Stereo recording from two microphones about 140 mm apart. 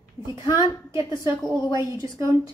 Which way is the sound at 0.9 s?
25° right (ahead or behind).